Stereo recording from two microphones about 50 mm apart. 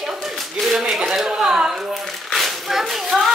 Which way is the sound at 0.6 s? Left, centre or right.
Centre.